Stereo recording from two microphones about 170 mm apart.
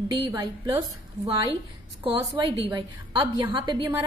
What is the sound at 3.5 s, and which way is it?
Speech, 25° right (ahead or behind).